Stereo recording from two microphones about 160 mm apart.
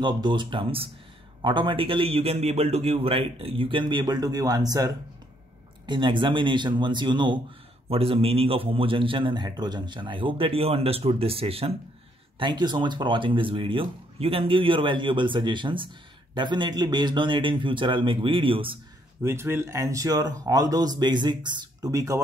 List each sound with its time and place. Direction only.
0.0 s a man's voice: 30° right (ahead or behind)
19.2 s a man's voice: 15° right (ahead or behind)